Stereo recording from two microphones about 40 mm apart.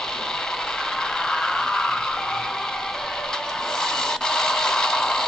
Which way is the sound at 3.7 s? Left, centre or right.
Centre.